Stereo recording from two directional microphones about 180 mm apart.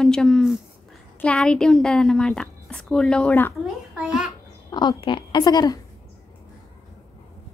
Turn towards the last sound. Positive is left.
turn(degrees=20)  # may be behind; listen again after turning